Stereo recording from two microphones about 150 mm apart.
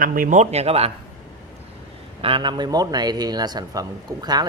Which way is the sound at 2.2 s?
35° right (ahead or behind).